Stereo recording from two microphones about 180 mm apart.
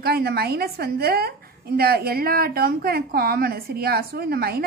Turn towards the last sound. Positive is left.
turn(degrees=-60)  # may be behind; listen again after turning